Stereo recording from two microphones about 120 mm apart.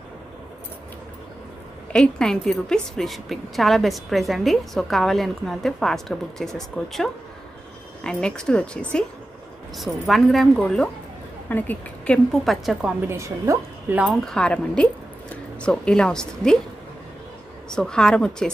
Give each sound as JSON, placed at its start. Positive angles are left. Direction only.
{"t": 1.9, "sound": "a woman's voice", "side_deg": 5}
{"t": 11.4, "sound": "speech", "side_deg": 15}
{"t": 12.3, "sound": "a woman's voice", "side_deg": 0}
{"t": 13.0, "sound": "a woman's voice", "side_deg": -20}
{"t": 14.0, "sound": "a woman's voice", "side_deg": 5}
{"t": 17.6, "sound": "a woman's voice", "side_deg": 5}